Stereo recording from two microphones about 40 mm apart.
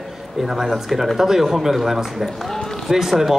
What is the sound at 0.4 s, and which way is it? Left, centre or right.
A man's voice, centre.